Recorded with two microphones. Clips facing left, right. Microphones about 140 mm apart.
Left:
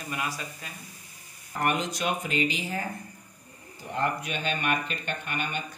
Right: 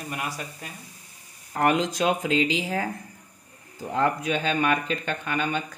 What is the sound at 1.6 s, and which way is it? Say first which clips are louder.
Speech: right 6 dB; 90° right.